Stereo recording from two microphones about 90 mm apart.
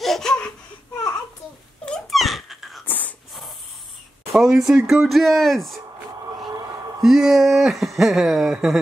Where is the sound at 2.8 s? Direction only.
20° left (ahead or behind).